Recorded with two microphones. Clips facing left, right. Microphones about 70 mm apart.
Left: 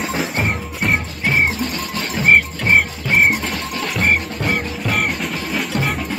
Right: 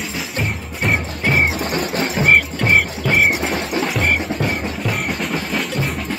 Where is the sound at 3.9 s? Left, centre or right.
Left.